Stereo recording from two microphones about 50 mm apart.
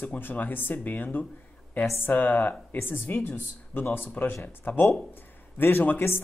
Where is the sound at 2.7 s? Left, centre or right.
Left.